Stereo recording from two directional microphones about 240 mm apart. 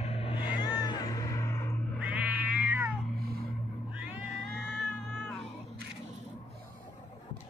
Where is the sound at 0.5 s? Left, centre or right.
Centre.